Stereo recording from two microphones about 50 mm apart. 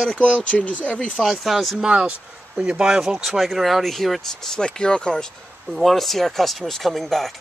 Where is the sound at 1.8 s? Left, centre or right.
Centre.